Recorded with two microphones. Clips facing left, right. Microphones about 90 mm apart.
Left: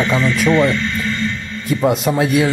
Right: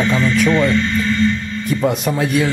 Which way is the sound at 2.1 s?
15° left (ahead or behind).